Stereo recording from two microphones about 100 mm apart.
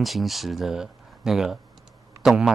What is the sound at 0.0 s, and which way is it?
Speech, centre (ahead or behind).